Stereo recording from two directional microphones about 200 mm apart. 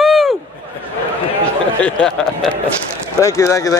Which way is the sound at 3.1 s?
15° left (ahead or behind).